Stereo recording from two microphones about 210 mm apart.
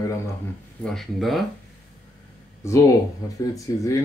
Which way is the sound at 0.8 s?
Centre (ahead or behind).